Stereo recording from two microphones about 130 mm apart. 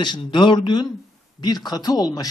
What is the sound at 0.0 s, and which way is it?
Speech, 35° left (ahead or behind).